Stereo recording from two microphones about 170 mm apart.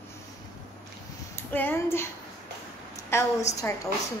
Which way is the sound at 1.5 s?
10° left (ahead or behind).